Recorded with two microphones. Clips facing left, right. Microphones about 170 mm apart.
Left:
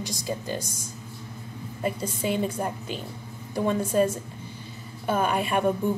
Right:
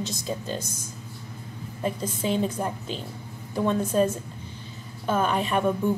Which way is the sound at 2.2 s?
10° left (ahead or behind).